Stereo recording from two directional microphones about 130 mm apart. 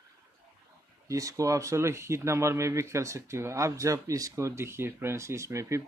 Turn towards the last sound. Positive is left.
turn(degrees=-20)  # may be behind; listen again after turning